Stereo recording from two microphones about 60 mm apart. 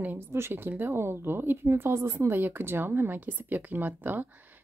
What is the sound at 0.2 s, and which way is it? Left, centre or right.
Speech, right.